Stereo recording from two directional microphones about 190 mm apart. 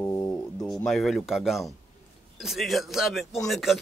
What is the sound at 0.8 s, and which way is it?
Speech, centre (ahead or behind).